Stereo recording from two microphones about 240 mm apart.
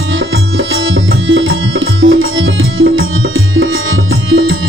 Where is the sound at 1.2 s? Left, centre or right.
Right.